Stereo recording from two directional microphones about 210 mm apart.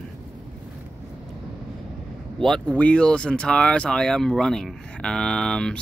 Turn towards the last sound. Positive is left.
turn(degrees=5)  # may be behind; listen again after turning